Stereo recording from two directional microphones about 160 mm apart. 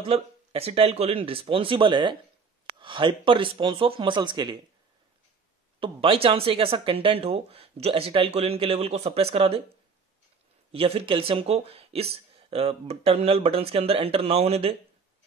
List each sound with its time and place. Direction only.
0.0 s speech: 35° right (ahead or behind)
5.8 s speech: 35° right (ahead or behind)
10.7 s speech: 35° right (ahead or behind)